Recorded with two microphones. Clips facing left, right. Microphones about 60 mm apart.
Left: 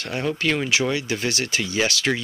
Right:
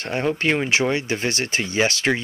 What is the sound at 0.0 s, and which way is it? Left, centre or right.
Speech, right.